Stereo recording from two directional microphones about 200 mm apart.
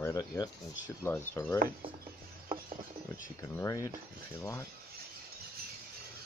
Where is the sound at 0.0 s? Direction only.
20° left (ahead or behind).